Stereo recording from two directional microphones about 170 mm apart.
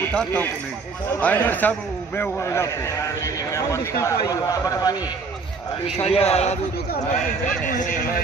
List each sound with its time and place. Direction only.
0.0 s a man's voice: 5° left (ahead or behind)
5.9 s a man's voice: 35° left (ahead or behind)
7.6 s a man's voice: 50° left (ahead or behind)